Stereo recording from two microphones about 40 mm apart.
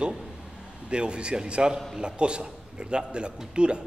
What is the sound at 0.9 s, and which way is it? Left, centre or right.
Speech, right.